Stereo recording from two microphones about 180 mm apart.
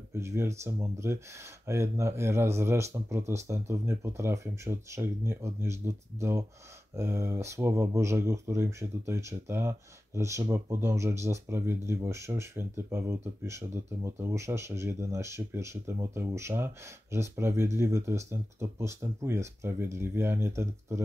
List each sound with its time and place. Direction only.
0.1 s speech: 15° right (ahead or behind)